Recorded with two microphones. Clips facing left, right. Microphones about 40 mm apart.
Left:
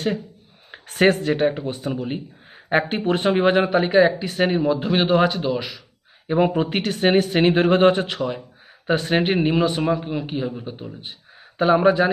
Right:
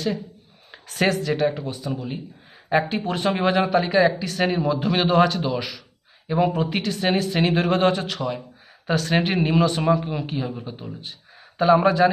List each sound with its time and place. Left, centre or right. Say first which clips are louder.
0.8 s speech: left 4 dB; left
4.6 s a man's voice: left 2 dB; centre
6.2 s speech: left 2 dB; left
6.6 s a man's voice: left 3 dB; left; by 12.1 s centre